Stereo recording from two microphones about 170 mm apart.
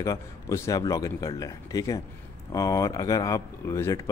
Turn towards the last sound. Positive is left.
turn(degrees=15)  # may be behind; listen again after turning